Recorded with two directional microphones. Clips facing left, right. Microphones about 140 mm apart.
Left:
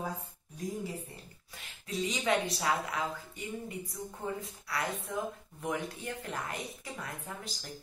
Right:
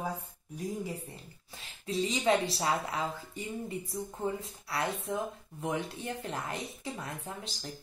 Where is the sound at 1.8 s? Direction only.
30° right (ahead or behind).